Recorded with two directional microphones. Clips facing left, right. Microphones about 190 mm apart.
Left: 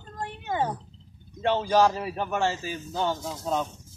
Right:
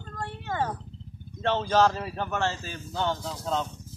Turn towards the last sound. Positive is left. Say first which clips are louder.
# left 1 dB
turn(degrees=10)  # may be behind; listen again after turning